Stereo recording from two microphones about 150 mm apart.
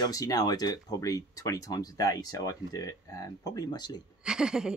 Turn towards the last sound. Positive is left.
turn(degrees=-5)  # may be behind; listen again after turning